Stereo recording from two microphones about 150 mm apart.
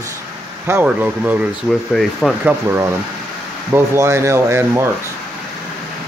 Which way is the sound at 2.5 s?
15° right (ahead or behind).